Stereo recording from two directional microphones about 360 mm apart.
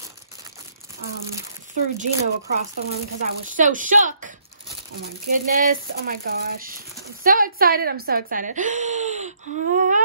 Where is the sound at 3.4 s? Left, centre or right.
Right.